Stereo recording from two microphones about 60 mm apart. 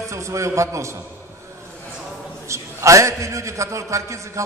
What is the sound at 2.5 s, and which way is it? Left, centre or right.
A man's voice, right.